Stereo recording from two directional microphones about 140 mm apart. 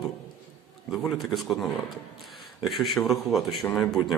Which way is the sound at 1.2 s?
Centre (ahead or behind).